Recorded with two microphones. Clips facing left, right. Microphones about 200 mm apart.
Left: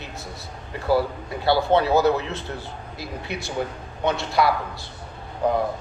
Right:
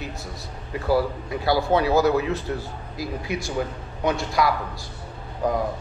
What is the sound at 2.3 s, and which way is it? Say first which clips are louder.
Speech: right 5 dB; 75° left (ahead or behind).